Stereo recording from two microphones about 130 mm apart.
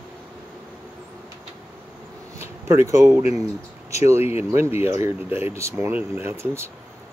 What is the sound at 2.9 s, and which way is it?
Speech, 20° right (ahead or behind).